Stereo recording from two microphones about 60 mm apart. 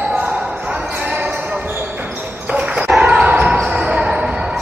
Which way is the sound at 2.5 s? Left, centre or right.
Centre.